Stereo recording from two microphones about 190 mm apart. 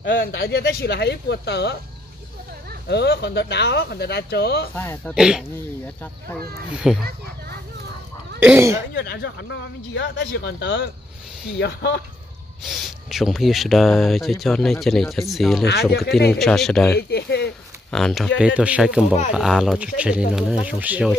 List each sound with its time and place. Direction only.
0.0 s speech: 70° left (ahead or behind)
2.9 s speech: 65° left (ahead or behind)
4.7 s speech: 10° left (ahead or behind)
5.1 s speech: 5° right (ahead or behind)
6.7 s speech: 5° right (ahead or behind)
8.4 s speech: 10° right (ahead or behind)
8.9 s speech: 60° left (ahead or behind)
12.6 s speech: centre (ahead or behind)
17.1 s speech: 60° left (ahead or behind)
17.9 s speech: centre (ahead or behind)